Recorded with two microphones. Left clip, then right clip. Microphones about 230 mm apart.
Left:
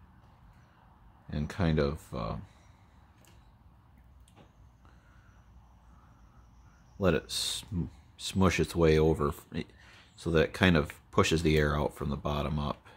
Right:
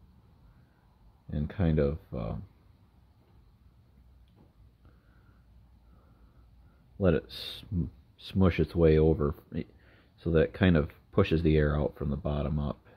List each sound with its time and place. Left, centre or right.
1.3 s speech: centre
7.0 s speech: centre